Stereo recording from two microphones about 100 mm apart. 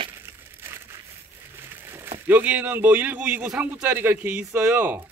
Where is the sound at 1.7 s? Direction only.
20° right (ahead or behind).